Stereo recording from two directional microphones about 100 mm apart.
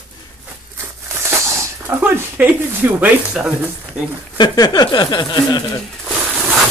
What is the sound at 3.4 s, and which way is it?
Speech, 5° right (ahead or behind).